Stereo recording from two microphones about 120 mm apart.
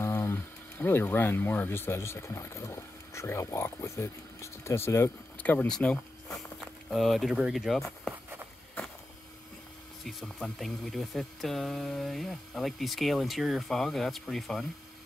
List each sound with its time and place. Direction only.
0.0 s speech: 20° left (ahead or behind); by 8.1 s centre (ahead or behind)
10.0 s speech: centre (ahead or behind)